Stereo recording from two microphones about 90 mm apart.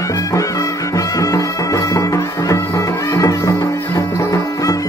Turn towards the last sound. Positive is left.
turn(degrees=40)  # may be behind; listen again after turning